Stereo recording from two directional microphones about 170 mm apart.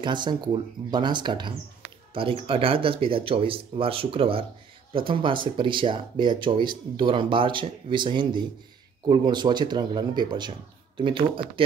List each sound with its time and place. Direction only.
0.0 s speech: 25° right (ahead or behind)